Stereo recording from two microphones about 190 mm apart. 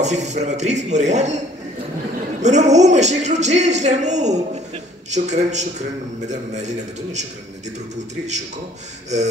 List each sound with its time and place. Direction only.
0.0 s a man's voice: 40° right (ahead or behind)
2.4 s a man's voice: 40° right (ahead or behind)